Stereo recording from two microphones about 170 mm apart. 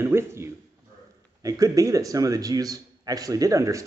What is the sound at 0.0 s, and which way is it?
A man's voice, 15° right (ahead or behind).